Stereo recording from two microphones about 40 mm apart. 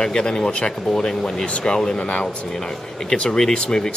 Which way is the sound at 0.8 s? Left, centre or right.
Centre.